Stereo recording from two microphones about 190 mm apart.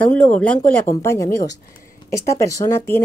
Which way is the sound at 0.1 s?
10° left (ahead or behind).